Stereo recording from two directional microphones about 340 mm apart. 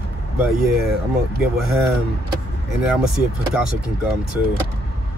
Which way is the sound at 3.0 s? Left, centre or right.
Centre.